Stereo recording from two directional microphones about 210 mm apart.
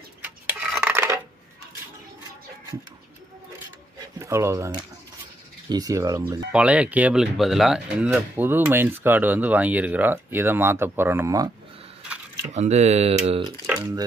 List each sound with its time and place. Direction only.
0.2 s a sound: 5° right (ahead or behind)
4.2 s speech: 15° right (ahead or behind)
6.5 s speech: 5° right (ahead or behind)
12.5 s speech: 30° right (ahead or behind)